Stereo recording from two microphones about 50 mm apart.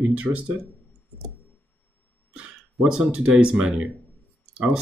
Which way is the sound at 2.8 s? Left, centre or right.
Centre.